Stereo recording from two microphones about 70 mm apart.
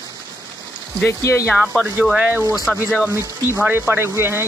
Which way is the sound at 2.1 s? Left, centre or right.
Centre.